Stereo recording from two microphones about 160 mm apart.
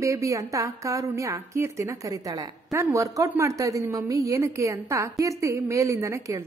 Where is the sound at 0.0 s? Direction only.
20° right (ahead or behind).